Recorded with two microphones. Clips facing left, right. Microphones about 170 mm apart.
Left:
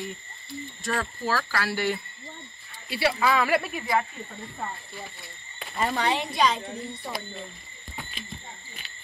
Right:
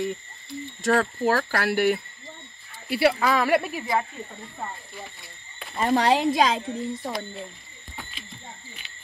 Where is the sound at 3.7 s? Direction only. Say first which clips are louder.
Even; 20° right (ahead or behind).